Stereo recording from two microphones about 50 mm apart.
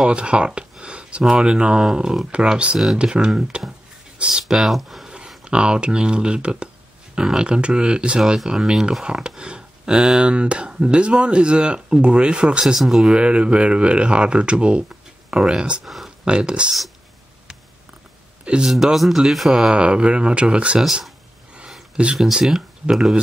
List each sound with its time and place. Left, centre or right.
0.0 s speech: right; by 5.0 s centre
5.0 s a sound: centre
5.4 s speech: centre
12.7 s speech: centre
13.2 s speech: right
15.8 s speech: centre
16.3 s speech: centre
18.4 s a sound: right
18.9 s speech: centre; by 20.8 s right
21.6 s a sound: centre
22.1 s speech: centre